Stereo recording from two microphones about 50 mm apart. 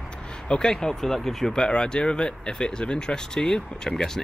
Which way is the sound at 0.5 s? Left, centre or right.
Centre.